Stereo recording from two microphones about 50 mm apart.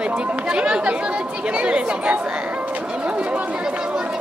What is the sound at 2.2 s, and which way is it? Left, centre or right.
Chatter, right.